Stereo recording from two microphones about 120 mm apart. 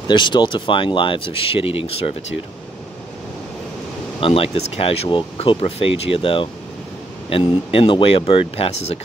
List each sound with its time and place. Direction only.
0.1 s speech: 40° left (ahead or behind)
4.2 s speech: 55° left (ahead or behind)